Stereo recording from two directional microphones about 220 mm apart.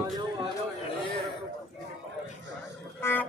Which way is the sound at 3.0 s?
10° left (ahead or behind).